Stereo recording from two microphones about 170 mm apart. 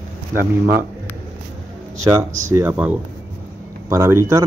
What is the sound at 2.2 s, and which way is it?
Speech, 50° right (ahead or behind).